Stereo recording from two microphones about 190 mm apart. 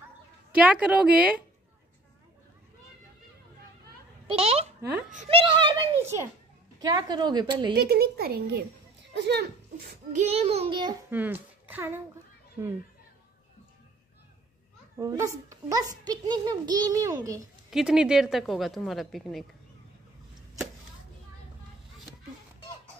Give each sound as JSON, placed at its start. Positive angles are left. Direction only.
{"t": 0.6, "sound": "speech", "side_deg": -5}
{"t": 4.3, "sound": "a child's voice", "side_deg": -30}
{"t": 6.8, "sound": "a child's voice", "side_deg": -20}
{"t": 7.7, "sound": "speech", "side_deg": -55}
{"t": 10.1, "sound": "a child's voice", "side_deg": -35}
{"t": 11.1, "sound": "speech", "side_deg": -10}
{"t": 15.0, "sound": "a child's voice", "side_deg": -15}
{"t": 17.6, "sound": "a woman's voice", "side_deg": -5}